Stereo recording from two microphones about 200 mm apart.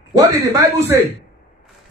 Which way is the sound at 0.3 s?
15° right (ahead or behind).